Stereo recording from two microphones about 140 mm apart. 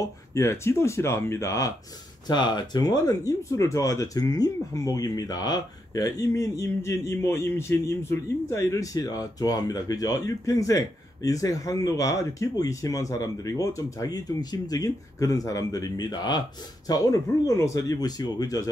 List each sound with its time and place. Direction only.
0.0 s speech: 20° left (ahead or behind)
2.2 s speech: 30° left (ahead or behind)